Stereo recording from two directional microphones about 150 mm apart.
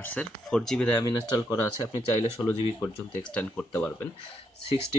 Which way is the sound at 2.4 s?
5° left (ahead or behind).